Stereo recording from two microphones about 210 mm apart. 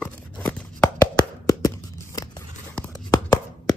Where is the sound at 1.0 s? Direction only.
15° left (ahead or behind).